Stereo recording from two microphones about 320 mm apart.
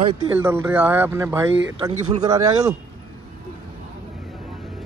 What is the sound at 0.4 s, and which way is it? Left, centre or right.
Speech, centre.